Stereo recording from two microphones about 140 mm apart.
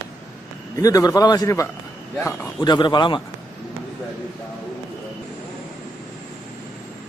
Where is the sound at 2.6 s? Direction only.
35° left (ahead or behind).